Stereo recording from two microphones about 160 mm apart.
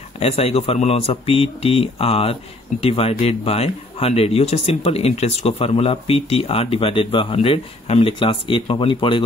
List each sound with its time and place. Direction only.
0.2 s speech: 40° left (ahead or behind)